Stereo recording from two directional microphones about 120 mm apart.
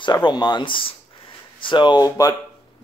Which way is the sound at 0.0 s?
40° left (ahead or behind).